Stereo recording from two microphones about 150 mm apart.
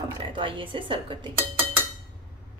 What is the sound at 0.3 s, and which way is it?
A woman's voice, 35° right (ahead or behind).